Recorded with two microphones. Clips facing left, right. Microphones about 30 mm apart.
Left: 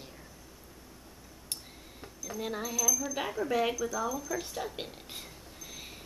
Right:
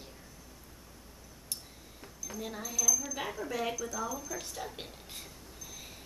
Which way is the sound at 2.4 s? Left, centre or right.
Left.